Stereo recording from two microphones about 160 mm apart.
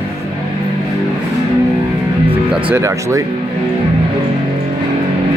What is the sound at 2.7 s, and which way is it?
Speech, 20° right (ahead or behind).